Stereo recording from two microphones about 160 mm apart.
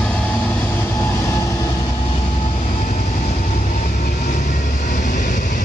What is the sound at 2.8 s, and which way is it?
Vehicle, 50° left (ahead or behind).